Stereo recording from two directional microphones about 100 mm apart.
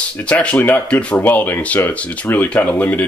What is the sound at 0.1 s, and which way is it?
Speech, 15° left (ahead or behind).